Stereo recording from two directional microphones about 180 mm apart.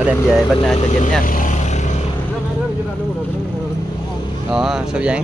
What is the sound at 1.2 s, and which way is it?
Vehicle, 50° left (ahead or behind).